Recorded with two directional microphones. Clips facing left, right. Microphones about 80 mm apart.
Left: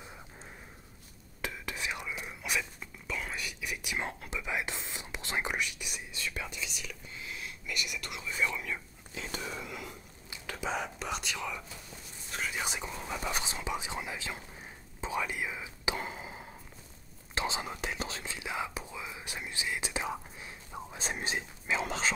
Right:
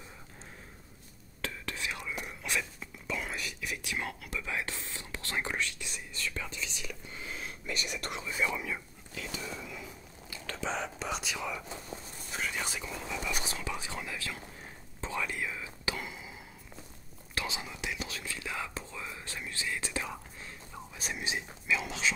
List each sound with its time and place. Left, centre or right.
1.4 s whispering: centre
2.0 s whispering: centre
3.8 s speech: centre
7.2 s whispering: right
8.4 s speech: centre
9.6 s a sound: left
10.3 s whispering: centre
12.8 s whispering: left
13.4 s whispering: left
16.0 s a sound: left
17.3 s whispering: left
17.6 s whispering: left; by 20.8 s centre
20.9 s whispering: left